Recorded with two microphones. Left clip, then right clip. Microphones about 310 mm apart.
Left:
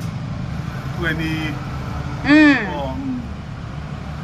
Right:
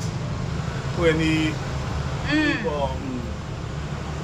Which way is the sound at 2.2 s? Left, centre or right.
Centre.